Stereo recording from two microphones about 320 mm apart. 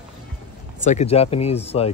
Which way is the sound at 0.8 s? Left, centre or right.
Left.